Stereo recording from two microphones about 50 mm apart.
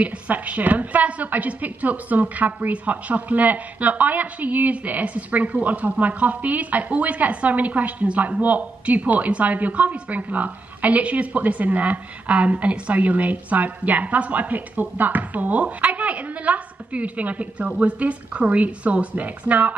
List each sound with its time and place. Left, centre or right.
0.0 s a woman's voice: right